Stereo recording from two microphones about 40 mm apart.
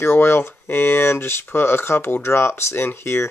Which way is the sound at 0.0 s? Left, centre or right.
Left.